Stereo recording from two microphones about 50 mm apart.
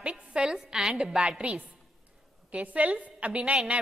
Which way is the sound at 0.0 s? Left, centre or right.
Right.